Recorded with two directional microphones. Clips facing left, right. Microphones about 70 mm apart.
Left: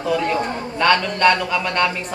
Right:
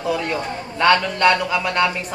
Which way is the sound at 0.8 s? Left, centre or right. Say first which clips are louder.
Right 1 dB; centre.